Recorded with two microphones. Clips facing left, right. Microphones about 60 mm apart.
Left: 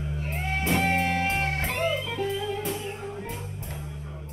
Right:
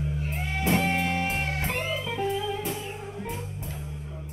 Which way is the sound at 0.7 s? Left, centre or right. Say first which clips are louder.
Left 2 dB; left.